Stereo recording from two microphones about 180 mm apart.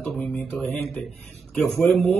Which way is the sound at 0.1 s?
10° left (ahead or behind).